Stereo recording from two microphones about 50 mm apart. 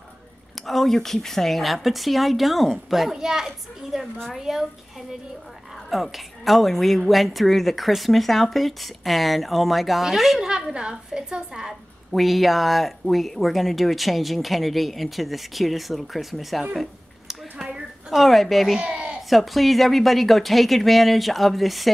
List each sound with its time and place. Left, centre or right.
0.6 s a woman's voice: centre
6.1 s a woman's voice: centre
10.4 s a woman's voice: centre
16.7 s a sound: centre
18.1 s a woman's voice: centre
18.8 s a sound: centre
19.2 s a woman's voice: centre